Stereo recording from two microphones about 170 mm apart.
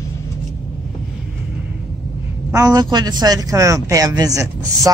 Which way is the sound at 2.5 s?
20° right (ahead or behind).